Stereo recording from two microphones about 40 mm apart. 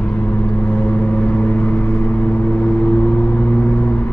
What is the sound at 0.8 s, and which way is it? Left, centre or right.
Vehicle, left.